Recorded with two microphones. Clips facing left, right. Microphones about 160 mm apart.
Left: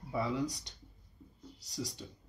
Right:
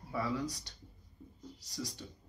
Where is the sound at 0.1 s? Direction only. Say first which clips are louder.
Left 2 dB; 20° left (ahead or behind).